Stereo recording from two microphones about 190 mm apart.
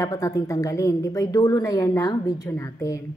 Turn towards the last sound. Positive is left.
turn(degrees=15)  # may be behind; listen again after turning